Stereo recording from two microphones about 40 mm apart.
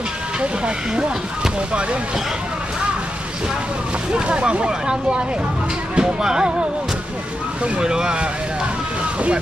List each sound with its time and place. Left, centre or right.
0.9 s speech: centre
4.1 s speech: right
7.8 s speech: centre